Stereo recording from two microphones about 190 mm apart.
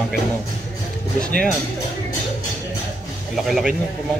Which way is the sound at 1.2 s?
5° left (ahead or behind).